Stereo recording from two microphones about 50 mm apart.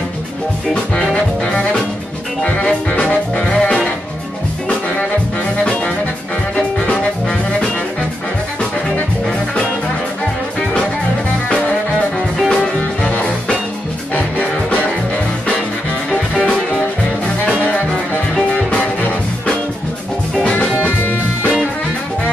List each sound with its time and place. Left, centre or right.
1.4 s music: centre
13.0 s music: left
20.4 s music: left
21.0 s music: left